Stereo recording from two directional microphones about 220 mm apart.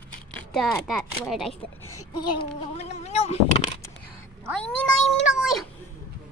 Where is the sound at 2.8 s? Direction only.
30° left (ahead or behind).